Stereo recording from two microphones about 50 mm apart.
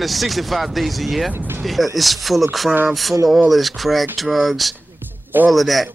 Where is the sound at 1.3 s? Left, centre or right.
Right.